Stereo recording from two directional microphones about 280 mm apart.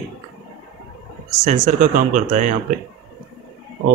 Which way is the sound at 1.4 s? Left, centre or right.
Right.